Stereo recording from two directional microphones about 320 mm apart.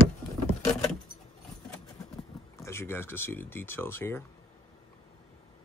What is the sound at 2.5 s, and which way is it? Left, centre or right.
Speech, centre.